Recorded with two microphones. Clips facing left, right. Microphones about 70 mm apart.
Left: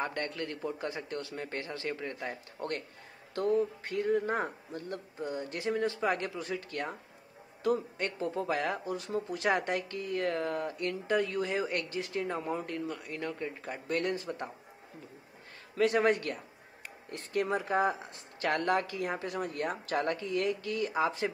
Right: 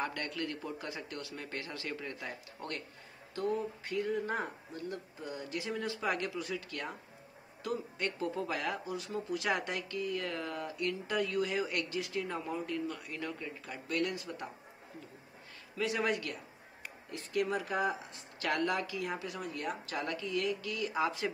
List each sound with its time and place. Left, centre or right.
0.0 s speech: left
3.3 s speech: left
12.8 s speech: centre
13.4 s speech: left
15.7 s speech: left